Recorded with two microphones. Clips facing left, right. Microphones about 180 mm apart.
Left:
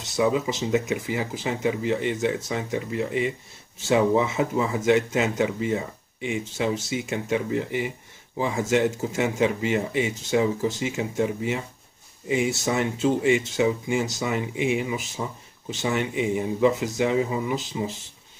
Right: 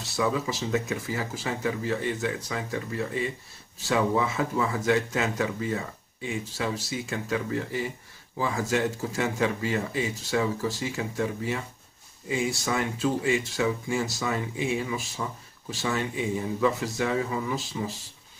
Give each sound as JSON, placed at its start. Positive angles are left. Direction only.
{"t": 0.0, "sound": "speech", "side_deg": 20}